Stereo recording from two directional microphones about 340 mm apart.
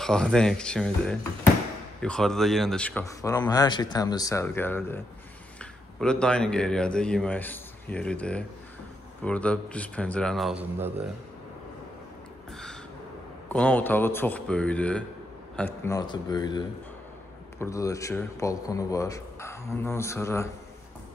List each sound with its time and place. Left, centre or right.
0.0 s speech: centre
13.5 s speech: centre